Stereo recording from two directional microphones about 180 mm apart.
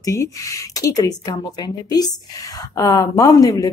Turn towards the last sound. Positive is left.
turn(degrees=20)  # may be behind; listen again after turning